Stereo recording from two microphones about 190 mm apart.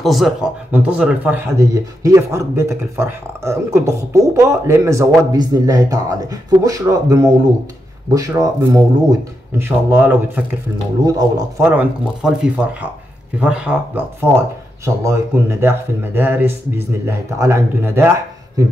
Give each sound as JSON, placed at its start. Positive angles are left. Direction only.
{"t": 0.0, "sound": "speech", "side_deg": 0}
{"t": 15.0, "sound": "speech", "side_deg": -10}